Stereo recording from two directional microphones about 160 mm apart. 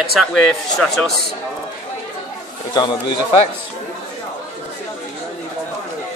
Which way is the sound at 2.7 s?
30° left (ahead or behind).